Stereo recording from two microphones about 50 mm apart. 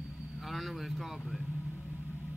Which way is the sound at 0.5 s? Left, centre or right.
Centre.